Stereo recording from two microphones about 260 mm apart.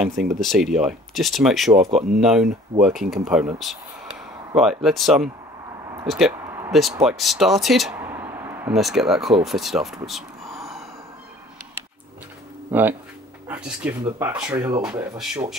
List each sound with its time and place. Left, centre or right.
0.4 s speech: centre
1.8 s speech: right
2.1 s speech: centre
10.0 s a sound: centre
12.7 s speech: centre
14.1 s speech: centre